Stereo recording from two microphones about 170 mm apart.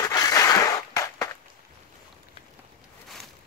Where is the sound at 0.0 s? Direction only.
20° left (ahead or behind).